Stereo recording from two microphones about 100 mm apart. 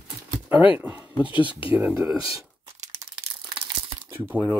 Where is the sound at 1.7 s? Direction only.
20° right (ahead or behind).